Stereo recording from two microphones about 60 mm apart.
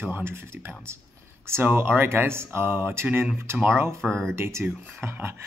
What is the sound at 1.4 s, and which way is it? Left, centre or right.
Speech, right.